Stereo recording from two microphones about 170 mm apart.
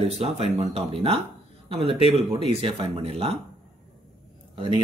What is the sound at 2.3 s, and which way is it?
Speech, 30° right (ahead or behind).